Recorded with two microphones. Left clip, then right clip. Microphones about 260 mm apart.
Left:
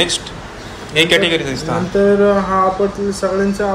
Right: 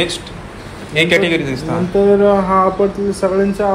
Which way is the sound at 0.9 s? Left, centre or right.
Centre.